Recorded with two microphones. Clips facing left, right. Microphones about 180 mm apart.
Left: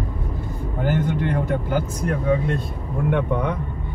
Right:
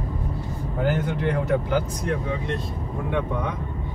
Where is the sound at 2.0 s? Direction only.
50° left (ahead or behind).